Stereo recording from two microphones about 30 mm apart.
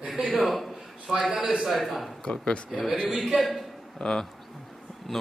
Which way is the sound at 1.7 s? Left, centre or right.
Centre.